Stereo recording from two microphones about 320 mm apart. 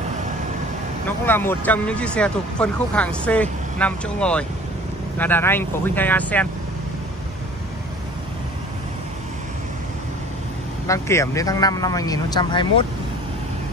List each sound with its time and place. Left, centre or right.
1.0 s speech: centre
10.9 s a man's voice: centre